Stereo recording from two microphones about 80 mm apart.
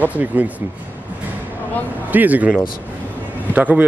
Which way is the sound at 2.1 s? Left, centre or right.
Right.